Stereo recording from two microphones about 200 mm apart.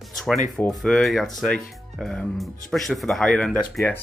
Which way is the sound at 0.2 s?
Centre (ahead or behind).